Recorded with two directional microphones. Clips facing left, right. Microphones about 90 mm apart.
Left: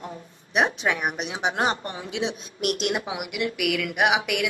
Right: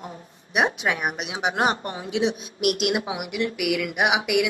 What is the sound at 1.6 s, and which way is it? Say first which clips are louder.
Speech: right 3 dB; 30° left (ahead or behind).